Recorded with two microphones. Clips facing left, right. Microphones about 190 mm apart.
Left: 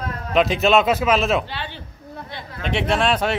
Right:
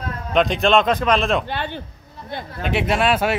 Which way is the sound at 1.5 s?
50° right (ahead or behind).